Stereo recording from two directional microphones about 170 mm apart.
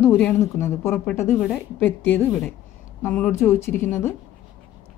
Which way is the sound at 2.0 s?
10° left (ahead or behind).